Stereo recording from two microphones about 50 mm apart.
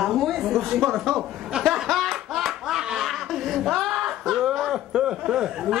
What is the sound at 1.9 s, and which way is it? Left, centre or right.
Clapping, centre.